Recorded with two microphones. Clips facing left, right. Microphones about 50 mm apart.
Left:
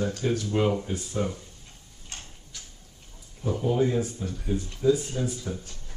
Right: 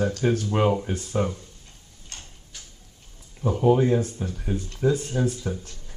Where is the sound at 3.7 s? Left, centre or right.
Right.